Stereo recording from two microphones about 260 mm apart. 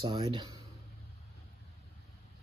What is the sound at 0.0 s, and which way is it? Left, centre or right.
Speech, centre.